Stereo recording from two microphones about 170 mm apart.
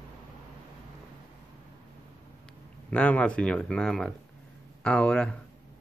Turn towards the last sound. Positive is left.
turn(degrees=5)  # may be behind; listen again after turning